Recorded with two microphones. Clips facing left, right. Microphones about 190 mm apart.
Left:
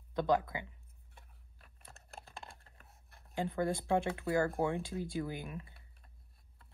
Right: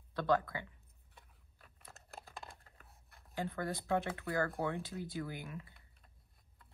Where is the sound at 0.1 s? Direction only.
20° left (ahead or behind).